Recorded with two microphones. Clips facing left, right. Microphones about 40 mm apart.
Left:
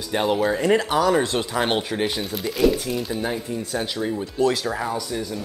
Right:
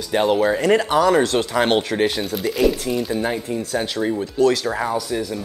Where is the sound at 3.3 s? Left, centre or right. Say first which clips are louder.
Right 3 dB; centre.